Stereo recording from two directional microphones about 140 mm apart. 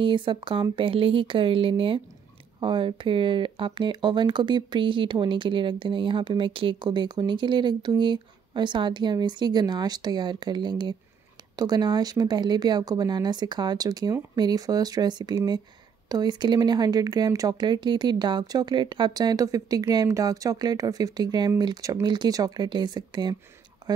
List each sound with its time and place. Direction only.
0.0 s speech: 35° right (ahead or behind)